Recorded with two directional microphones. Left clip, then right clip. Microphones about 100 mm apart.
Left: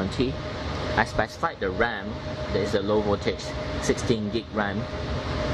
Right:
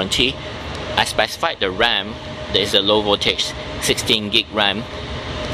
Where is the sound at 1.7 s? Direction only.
35° right (ahead or behind).